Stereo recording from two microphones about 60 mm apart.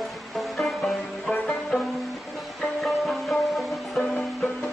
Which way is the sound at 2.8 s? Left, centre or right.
Centre.